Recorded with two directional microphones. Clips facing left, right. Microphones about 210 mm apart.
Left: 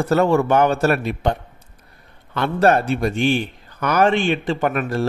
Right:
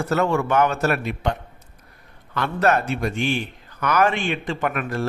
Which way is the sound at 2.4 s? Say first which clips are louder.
Left 4 dB; 30° left (ahead or behind).